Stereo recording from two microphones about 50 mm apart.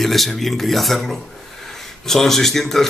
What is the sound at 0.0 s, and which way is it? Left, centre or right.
A man's voice, centre.